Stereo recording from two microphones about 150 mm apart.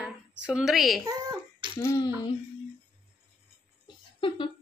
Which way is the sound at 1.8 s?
20° left (ahead or behind).